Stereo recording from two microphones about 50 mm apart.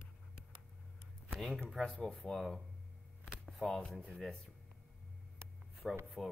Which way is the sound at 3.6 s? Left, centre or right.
Right.